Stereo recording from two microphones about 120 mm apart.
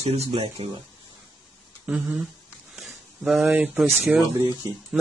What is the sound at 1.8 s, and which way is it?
Speech, 10° right (ahead or behind).